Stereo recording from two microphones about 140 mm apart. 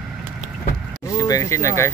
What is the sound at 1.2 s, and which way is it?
Speech, 25° left (ahead or behind).